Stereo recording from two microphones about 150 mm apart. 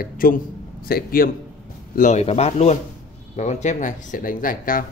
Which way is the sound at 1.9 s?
55° left (ahead or behind).